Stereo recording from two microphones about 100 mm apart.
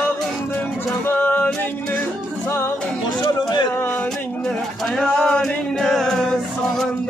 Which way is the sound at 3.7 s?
20° left (ahead or behind).